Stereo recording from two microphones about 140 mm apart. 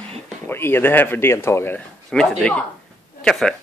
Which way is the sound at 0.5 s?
15° left (ahead or behind).